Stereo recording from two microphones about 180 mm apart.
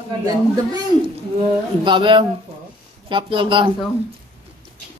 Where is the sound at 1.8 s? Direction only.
25° right (ahead or behind).